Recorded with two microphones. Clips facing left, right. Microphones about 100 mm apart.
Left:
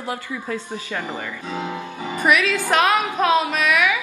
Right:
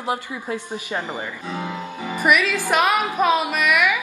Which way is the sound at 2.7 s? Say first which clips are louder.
Left 1 dB; 10° right (ahead or behind).